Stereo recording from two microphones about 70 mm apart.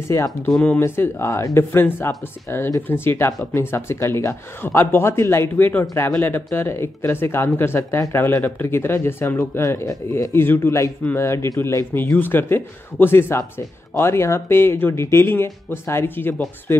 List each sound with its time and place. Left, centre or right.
0.1 s a man's voice: left
0.5 s speech: centre
0.7 s a man's voice: left
10.3 s a man's voice: left